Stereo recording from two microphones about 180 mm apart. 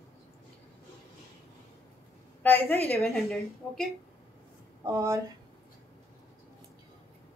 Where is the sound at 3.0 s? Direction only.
Centre (ahead or behind).